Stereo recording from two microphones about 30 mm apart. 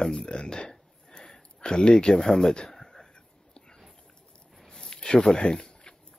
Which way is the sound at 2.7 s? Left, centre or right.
Centre.